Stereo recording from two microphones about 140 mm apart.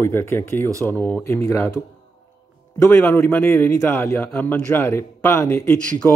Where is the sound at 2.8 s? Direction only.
20° left (ahead or behind).